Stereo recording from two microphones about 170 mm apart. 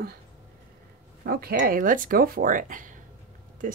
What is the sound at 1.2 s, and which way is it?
Speech, 60° right (ahead or behind).